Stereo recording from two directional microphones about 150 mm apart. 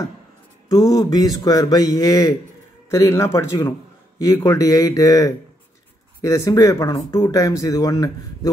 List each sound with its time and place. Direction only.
0.7 s speech: 25° left (ahead or behind)